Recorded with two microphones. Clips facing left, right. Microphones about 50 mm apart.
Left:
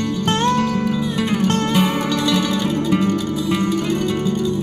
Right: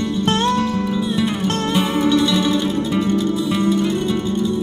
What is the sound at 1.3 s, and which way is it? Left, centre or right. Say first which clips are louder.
Music: left 2 dB; left.